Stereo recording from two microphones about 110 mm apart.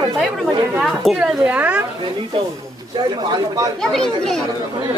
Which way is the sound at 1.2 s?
10° right (ahead or behind).